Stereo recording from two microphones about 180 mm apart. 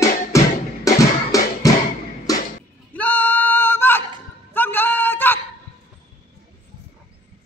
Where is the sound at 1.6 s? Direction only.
20° left (ahead or behind).